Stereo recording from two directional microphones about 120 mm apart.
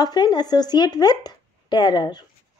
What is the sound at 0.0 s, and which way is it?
Speech, 35° left (ahead or behind).